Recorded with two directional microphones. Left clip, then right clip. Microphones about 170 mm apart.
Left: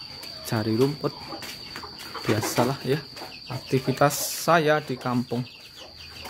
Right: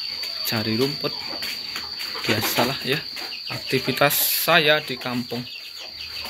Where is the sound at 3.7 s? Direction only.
25° left (ahead or behind).